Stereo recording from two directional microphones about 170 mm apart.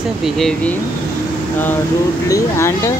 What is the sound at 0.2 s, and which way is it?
Speech, centre (ahead or behind).